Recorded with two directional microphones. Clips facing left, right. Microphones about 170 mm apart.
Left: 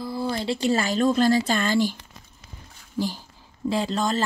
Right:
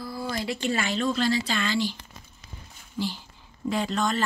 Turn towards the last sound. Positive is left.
turn(degrees=30)  # may be behind; listen again after turning